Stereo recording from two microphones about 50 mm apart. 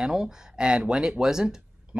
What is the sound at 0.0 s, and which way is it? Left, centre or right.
Speech, centre.